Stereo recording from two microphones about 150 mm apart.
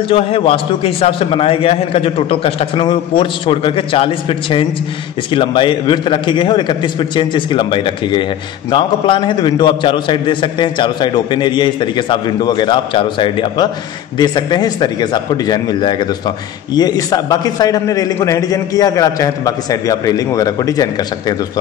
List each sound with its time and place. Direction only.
0.1 s a man's voice: 35° left (ahead or behind)